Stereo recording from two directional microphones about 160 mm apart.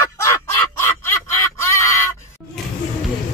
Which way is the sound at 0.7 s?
15° left (ahead or behind).